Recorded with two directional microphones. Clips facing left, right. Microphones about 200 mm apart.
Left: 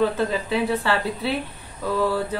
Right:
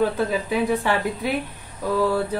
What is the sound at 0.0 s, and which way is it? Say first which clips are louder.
A woman's voice: even; 10° right (ahead or behind).